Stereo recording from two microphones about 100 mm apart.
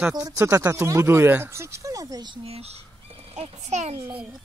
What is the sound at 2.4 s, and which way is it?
Speech, 90° right.